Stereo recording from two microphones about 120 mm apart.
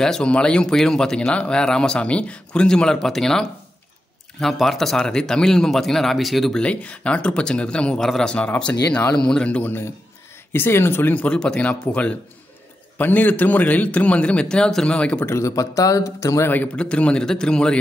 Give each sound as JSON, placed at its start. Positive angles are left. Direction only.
{"t": 0.0, "sound": "speech", "side_deg": 5}
{"t": 15.2, "sound": "speech", "side_deg": 25}
{"t": 16.7, "sound": "speech", "side_deg": 10}